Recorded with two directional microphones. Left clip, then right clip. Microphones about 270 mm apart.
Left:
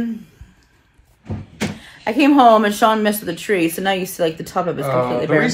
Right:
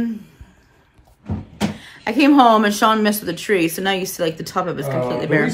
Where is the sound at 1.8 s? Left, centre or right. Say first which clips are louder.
Left 1 dB; centre.